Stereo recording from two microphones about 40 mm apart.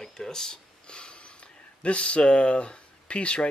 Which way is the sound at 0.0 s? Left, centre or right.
Centre.